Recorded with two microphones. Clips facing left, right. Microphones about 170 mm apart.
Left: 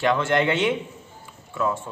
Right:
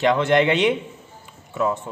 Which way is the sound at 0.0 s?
20° right (ahead or behind).